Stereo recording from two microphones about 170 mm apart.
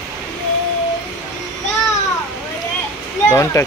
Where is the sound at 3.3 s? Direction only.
15° left (ahead or behind).